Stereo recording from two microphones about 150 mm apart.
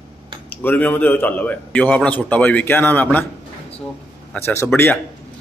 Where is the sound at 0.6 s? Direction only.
10° left (ahead or behind).